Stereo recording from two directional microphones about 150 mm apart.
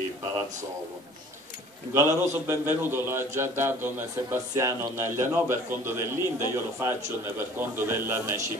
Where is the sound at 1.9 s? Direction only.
20° right (ahead or behind).